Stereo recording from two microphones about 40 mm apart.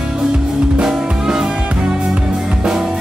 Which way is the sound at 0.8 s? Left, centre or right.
Centre.